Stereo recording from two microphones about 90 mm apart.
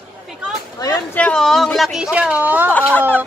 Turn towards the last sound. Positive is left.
turn(degrees=15)  # may be behind; listen again after turning